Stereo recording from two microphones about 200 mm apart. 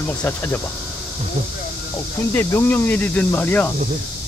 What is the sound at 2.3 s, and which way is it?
Speech, 15° left (ahead or behind).